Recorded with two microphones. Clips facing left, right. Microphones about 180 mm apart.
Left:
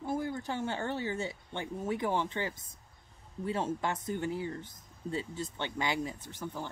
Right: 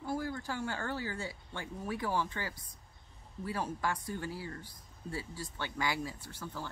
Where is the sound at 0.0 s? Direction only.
20° left (ahead or behind).